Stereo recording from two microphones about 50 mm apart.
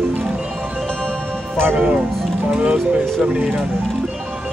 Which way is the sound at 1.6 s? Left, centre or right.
Right.